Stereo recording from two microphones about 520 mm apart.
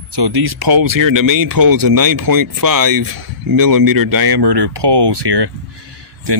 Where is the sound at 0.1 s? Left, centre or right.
Right.